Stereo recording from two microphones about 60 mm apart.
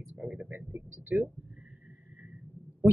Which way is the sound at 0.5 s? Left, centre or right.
Right.